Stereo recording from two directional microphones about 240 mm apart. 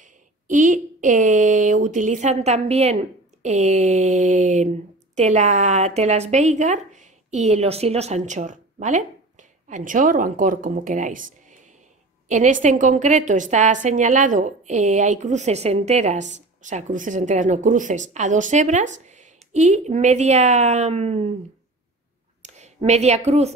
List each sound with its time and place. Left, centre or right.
0.0 s a woman's voice: right
22.4 s a woman's voice: right